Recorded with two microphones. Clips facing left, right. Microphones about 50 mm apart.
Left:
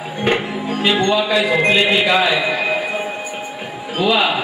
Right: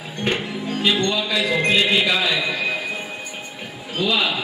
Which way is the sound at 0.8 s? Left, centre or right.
Left.